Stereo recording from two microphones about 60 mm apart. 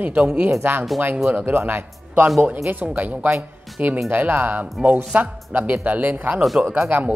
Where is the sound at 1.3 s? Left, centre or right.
Right.